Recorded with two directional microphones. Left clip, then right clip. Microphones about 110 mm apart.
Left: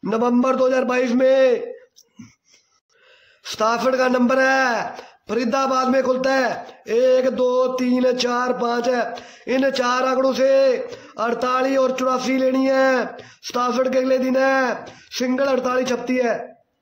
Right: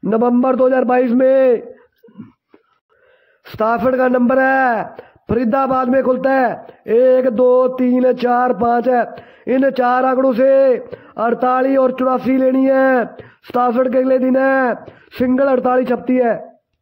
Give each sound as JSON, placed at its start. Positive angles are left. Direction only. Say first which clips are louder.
{"t": 0.1, "sound": "a man's voice", "louder": "right 4 dB", "side_deg": -40}
{"t": 3.4, "sound": "a man's voice", "louder": "right 3 dB", "side_deg": -50}